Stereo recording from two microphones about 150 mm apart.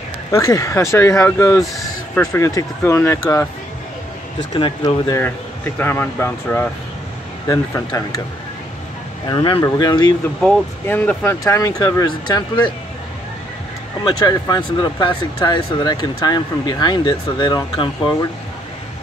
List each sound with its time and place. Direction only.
0.3 s speech: 20° left (ahead or behind)
4.6 s speech: 30° left (ahead or behind)
5.8 s speech: 15° left (ahead or behind)
9.3 s speech: 30° left (ahead or behind)
10.4 s speech: 5° left (ahead or behind); by 12.7 s 30° left (ahead or behind)
14.0 s speech: 30° left (ahead or behind)